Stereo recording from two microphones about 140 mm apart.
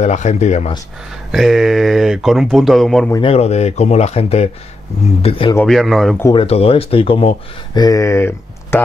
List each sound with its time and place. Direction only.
0.0 s speech: 55° left (ahead or behind)
1.3 s speech: centre (ahead or behind)
3.2 s speech: 45° left (ahead or behind)
5.7 s speech: centre (ahead or behind)
6.3 s speech: 45° left (ahead or behind)
7.7 s speech: 25° left (ahead or behind)